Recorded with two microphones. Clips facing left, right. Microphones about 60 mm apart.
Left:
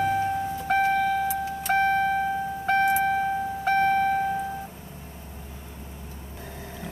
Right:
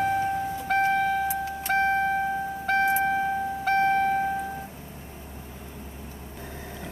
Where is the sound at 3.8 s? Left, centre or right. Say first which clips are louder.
Left 1 dB; centre.